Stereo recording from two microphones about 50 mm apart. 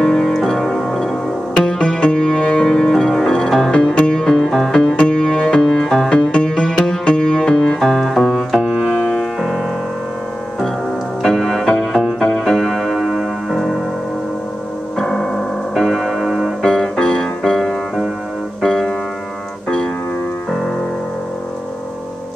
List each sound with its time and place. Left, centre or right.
0.0 s music: centre
3.7 s music: left
7.8 s music: centre
8.5 s music: centre
8.9 s music: centre
11.2 s music: centre
15.0 s music: centre
16.6 s music: centre
18.6 s piano: centre